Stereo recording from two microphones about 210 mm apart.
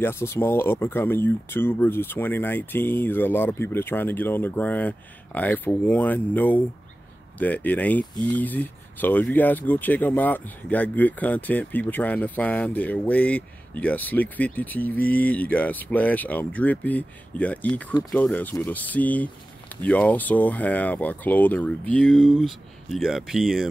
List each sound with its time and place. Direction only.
0.0 s speech: 10° left (ahead or behind)